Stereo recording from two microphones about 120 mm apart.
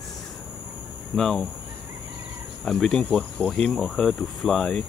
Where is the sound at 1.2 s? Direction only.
5° left (ahead or behind).